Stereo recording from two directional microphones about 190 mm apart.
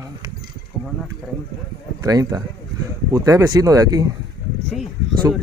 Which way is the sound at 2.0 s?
20° right (ahead or behind).